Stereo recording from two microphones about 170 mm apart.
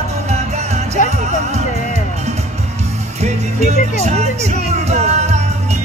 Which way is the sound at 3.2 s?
40° right (ahead or behind).